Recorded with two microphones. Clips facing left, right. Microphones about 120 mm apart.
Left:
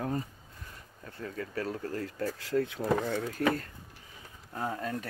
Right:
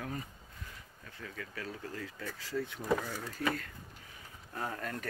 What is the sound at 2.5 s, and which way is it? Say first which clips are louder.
Speech: left 7 dB; 75° left (ahead or behind).